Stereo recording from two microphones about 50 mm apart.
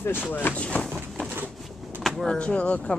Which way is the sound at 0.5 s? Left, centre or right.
Left.